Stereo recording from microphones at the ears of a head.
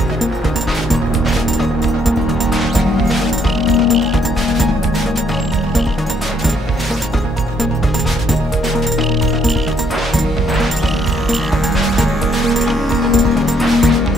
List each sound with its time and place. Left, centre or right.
3.6 s music: left